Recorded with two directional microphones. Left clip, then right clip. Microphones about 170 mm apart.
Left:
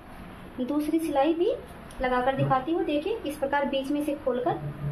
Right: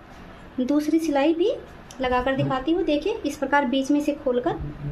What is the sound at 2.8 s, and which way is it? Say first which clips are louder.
A woman's voice: right 4 dB; 55° right (ahead or behind).